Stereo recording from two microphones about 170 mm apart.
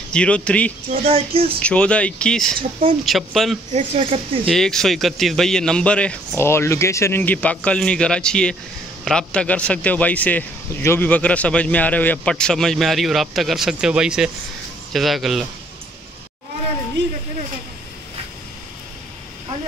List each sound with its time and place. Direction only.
0.1 s speech: 5° left (ahead or behind)
1.0 s speech: 35° right (ahead or behind)
1.6 s a man's voice: 5° left (ahead or behind)
3.7 s speech: 35° right (ahead or behind)
4.5 s a man's voice: 5° left (ahead or behind)
17.0 s a sound: 80° right